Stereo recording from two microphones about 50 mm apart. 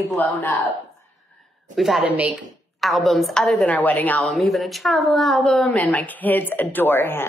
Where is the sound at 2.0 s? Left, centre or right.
Right.